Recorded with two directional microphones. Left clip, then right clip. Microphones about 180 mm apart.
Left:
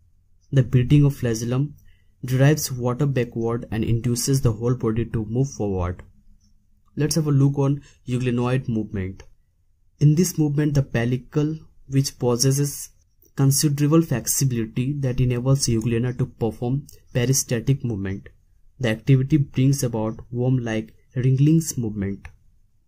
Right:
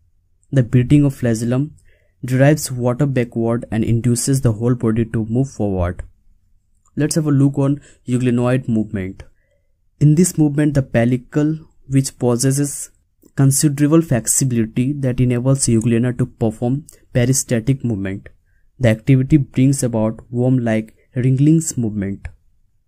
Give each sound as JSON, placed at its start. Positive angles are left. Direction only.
{"t": 0.5, "sound": "speech", "side_deg": -45}